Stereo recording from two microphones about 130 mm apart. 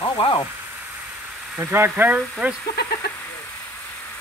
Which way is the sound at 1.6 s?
15° right (ahead or behind).